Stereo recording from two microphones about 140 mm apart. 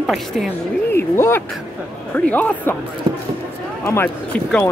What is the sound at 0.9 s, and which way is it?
Speech, 15° left (ahead or behind).